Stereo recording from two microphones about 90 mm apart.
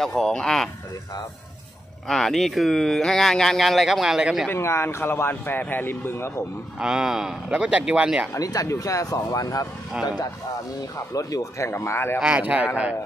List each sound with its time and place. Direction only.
0.0 s speech: 5° left (ahead or behind)
2.0 s speech: 5° left (ahead or behind)
4.5 s speech: 30° left (ahead or behind)
6.8 s a man's voice: 10° right (ahead or behind)
8.3 s speech: 40° left (ahead or behind)
11.1 s speech: 40° left (ahead or behind)
12.2 s a man's voice: 15° right (ahead or behind)